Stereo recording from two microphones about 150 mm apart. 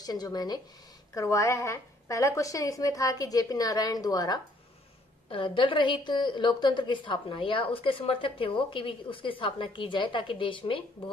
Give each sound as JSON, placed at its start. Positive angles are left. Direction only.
{"t": 0.0, "sound": "a woman's voice", "side_deg": 25}